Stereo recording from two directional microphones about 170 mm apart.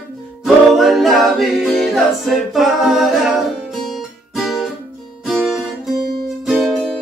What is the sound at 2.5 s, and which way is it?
A capella, centre (ahead or behind).